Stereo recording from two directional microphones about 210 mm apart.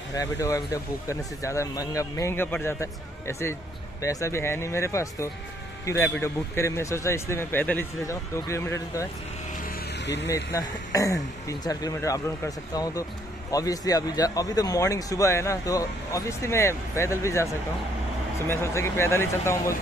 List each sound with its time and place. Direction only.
0.1 s a man's voice: 15° left (ahead or behind)
10.2 s a man's voice: 15° left (ahead or behind)
18.5 s a man's voice: 15° left (ahead or behind)